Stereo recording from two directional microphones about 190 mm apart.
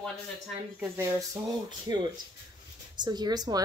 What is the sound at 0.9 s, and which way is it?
A woman's voice, 15° right (ahead or behind).